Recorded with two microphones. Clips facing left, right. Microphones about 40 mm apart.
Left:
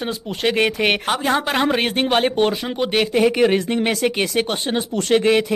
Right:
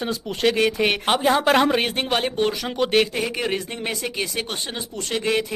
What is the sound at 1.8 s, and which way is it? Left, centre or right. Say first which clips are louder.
Speech: left 4 dB; left.